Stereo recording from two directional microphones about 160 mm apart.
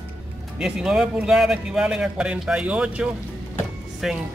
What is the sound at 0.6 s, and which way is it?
Speech, 5° right (ahead or behind).